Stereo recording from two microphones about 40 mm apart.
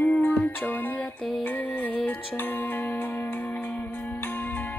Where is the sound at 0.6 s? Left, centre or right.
Left.